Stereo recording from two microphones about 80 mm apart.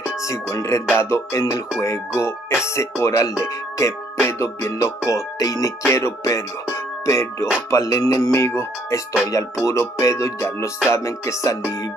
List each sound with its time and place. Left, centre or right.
0.0 s speech: left
5.9 s speech: left